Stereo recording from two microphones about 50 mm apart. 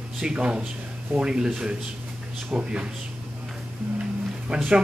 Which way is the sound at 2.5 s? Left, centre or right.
Right.